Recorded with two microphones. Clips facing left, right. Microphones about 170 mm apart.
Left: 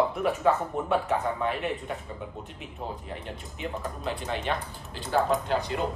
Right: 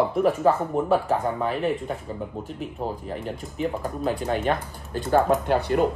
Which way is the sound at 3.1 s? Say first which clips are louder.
Right 7 dB; 40° right (ahead or behind).